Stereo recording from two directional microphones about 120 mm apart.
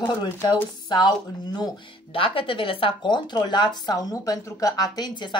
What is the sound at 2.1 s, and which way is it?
Speech, 45° left (ahead or behind).